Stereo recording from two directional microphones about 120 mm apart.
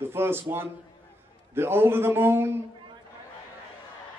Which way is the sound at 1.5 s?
20° right (ahead or behind).